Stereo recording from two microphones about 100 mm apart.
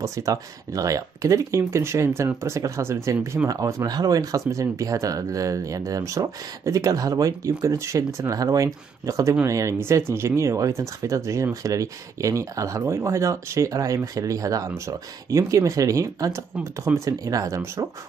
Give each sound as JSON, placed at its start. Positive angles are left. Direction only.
{"t": 0.0, "sound": "speech", "side_deg": -35}